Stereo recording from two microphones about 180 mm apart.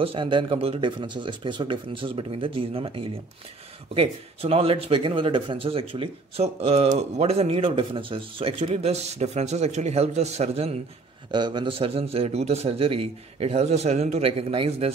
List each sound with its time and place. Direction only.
0.0 s speech: 30° right (ahead or behind)
11.3 s speech: 25° right (ahead or behind)